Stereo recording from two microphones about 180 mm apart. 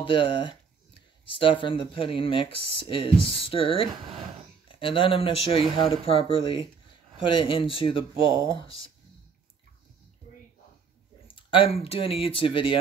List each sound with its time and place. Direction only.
0.0 s speech: 30° left (ahead or behind)
1.6 s speech: 30° left (ahead or behind)
11.3 s speech: 30° left (ahead or behind)